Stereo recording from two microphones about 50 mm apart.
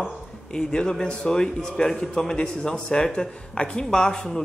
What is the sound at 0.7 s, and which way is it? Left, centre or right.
A man's voice, centre.